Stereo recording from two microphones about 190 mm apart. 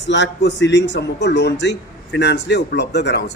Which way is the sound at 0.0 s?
70° left (ahead or behind).